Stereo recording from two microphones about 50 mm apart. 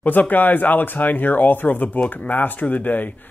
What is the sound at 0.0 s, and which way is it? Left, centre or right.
Speech, left.